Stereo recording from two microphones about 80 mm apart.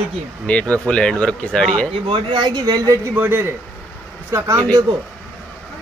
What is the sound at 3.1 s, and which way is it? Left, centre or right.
A man's voice, right.